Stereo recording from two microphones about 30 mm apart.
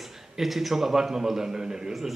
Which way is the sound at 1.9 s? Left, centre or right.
Centre.